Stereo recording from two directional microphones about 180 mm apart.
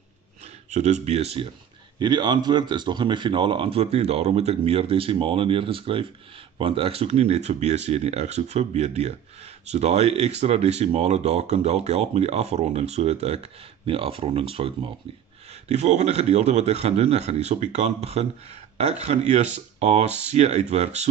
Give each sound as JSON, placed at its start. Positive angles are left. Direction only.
{"t": 0.4, "sound": "speech", "side_deg": -40}
{"t": 2.0, "sound": "speech", "side_deg": -25}